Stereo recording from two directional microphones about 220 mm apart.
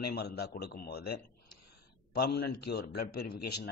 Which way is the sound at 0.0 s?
45° left (ahead or behind).